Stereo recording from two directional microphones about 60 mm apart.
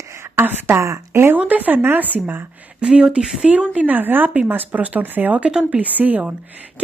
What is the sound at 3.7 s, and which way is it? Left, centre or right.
Speech, right.